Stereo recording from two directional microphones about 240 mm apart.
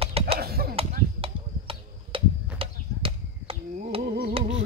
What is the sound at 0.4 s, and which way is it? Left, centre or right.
Chop, right.